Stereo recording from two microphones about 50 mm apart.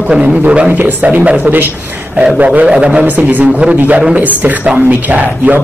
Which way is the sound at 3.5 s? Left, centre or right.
Centre.